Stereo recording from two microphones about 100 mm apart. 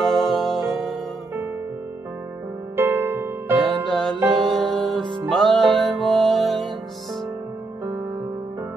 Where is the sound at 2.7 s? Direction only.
20° right (ahead or behind).